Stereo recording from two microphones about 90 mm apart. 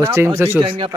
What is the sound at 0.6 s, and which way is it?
Speech, 90° right.